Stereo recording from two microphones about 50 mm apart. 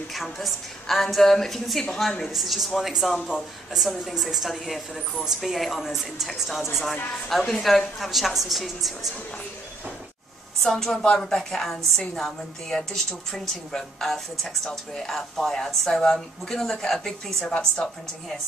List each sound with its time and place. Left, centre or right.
0.1 s a woman's voice: centre
2.3 s a woman's voice: centre
10.6 s a woman's voice: centre